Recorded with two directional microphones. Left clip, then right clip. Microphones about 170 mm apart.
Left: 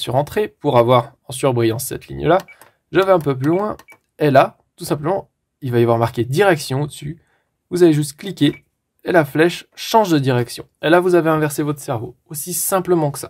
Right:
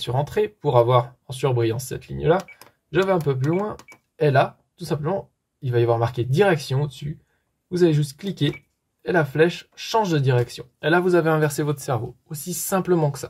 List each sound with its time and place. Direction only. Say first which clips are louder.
0.0 s speech: left 4 dB; 40° left (ahead or behind)